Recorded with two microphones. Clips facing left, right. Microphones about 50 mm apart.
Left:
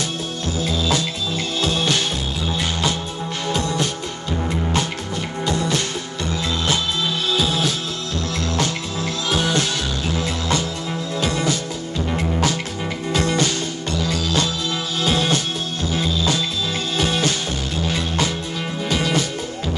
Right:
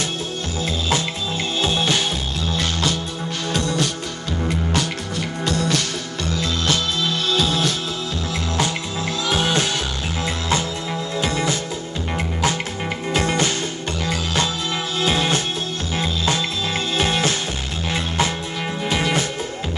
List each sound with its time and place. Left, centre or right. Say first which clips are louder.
0.6 s music: left 1 dB; right
1.6 s music: even; right
2.4 s music: even; centre
8.5 s music: even; right
13.1 s music: even; right